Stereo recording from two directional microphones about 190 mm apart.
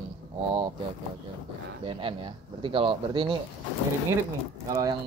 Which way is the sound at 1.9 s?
30° right (ahead or behind).